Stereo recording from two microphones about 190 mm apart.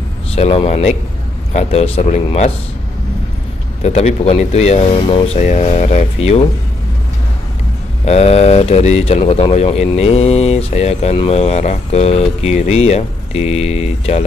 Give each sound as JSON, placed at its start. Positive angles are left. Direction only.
{"t": 0.4, "sound": "speech", "side_deg": 35}
{"t": 3.8, "sound": "speech", "side_deg": 35}
{"t": 8.0, "sound": "speech", "side_deg": 35}